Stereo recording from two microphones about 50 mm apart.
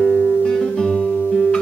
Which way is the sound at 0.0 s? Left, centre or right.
Centre.